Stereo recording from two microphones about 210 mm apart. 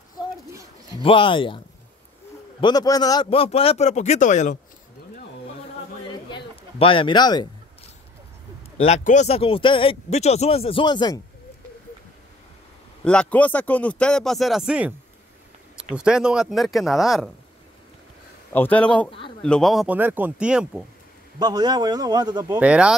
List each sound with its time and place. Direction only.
0.5 s bird: 15° right (ahead or behind)
1.0 s speech: 25° left (ahead or behind)
2.6 s speech: 20° left (ahead or behind); by 4.6 s 35° left (ahead or behind)
6.0 s a sound: 25° left (ahead or behind)
8.8 s speech: 35° left (ahead or behind)
13.0 s speech: 5° left (ahead or behind)
18.5 s a man's voice: 5° left (ahead or behind)
21.4 s a man's voice: 20° right (ahead or behind)
22.6 s speech: 5° right (ahead or behind)